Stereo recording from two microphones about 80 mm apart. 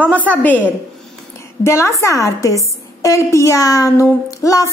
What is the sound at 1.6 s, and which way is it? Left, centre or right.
A woman's voice, left.